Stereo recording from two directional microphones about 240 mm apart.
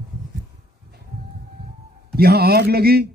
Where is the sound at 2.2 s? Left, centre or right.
Right.